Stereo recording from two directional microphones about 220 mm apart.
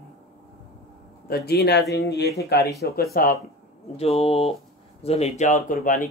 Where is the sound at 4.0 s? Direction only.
25° left (ahead or behind).